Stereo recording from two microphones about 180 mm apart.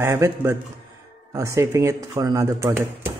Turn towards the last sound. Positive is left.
turn(degrees=-15)  # may be behind; listen again after turning